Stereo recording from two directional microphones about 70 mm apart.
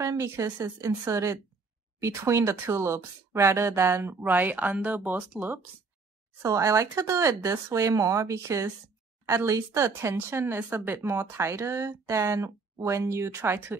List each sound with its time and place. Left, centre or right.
0.0 s a woman's voice: right
4.2 s a woman's voice: right
6.4 s a woman's voice: right
10.1 s speech: right